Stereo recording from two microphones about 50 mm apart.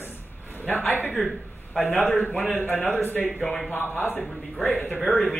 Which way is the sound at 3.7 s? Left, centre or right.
Left.